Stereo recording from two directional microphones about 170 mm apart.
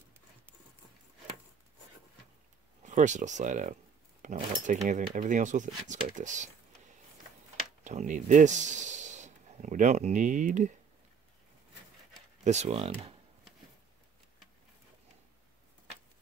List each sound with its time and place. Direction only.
2.8 s speech: 45° right (ahead or behind)
7.8 s speech: 45° right (ahead or behind)
12.4 s speech: 40° right (ahead or behind)